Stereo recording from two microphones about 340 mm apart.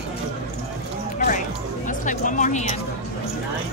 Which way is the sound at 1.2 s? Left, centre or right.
Left.